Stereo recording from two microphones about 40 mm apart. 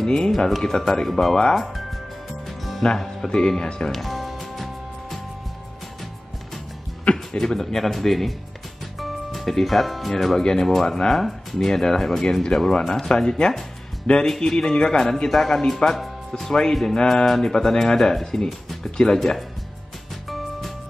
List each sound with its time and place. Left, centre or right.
0.0 s speech: centre
1.5 s speech: centre
2.8 s speech: left
3.9 s music: centre
7.3 s a man's voice: centre
16.4 s speech: centre
19.1 s a man's voice: centre
20.2 s music: centre